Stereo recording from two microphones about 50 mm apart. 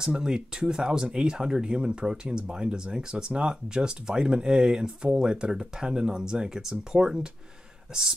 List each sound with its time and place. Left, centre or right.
0.0 s speech: centre